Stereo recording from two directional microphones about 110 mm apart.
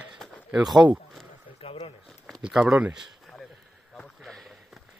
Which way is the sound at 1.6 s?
60° left (ahead or behind).